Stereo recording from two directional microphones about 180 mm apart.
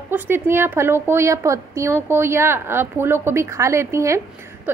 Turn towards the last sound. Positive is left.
turn(degrees=-15)  # may be behind; listen again after turning